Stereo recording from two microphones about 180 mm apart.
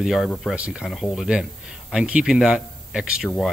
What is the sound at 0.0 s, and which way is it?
Speech, centre (ahead or behind).